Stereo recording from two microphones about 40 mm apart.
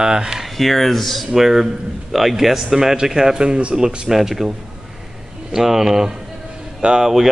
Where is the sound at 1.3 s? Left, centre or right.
Centre.